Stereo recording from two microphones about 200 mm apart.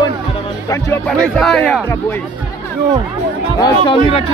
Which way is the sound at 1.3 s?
5° left (ahead or behind).